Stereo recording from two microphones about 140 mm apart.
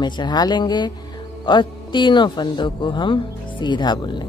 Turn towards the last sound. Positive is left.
turn(degrees=30)  # may be behind; listen again after turning